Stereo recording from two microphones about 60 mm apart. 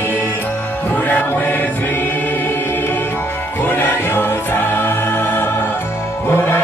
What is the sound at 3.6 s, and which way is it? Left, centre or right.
Music, left.